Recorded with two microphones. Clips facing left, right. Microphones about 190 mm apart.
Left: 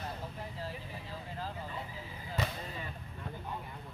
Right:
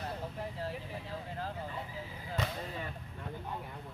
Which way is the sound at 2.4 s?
5° left (ahead or behind).